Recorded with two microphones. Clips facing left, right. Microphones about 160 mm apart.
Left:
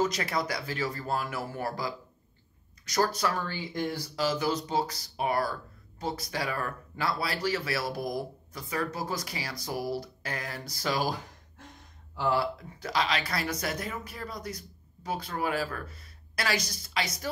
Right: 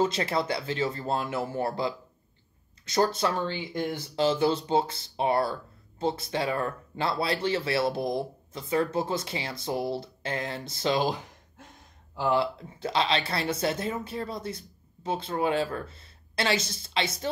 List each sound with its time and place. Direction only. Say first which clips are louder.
0.0 s speech: right 3 dB; 30° right (ahead or behind)
12.2 s speech: right 2 dB; 20° right (ahead or behind)